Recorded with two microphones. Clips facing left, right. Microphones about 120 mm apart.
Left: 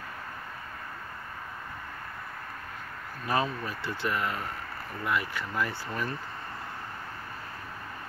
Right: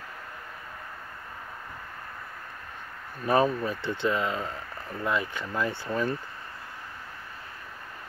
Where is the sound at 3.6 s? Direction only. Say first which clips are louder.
Right 5 dB; 20° right (ahead or behind).